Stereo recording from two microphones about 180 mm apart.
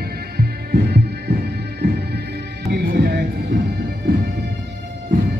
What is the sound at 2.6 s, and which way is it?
Music, 65° right (ahead or behind).